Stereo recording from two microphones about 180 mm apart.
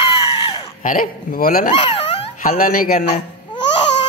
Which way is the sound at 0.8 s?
50° left (ahead or behind).